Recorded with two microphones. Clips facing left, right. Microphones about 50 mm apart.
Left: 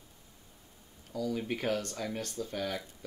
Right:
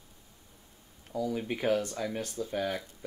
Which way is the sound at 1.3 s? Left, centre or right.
Centre.